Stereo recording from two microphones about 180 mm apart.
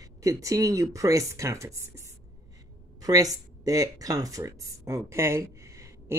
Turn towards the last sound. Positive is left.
turn(degrees=-15)  # may be behind; listen again after turning